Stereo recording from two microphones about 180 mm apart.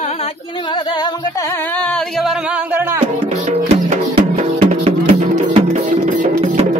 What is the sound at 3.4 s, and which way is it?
Music, 35° right (ahead or behind).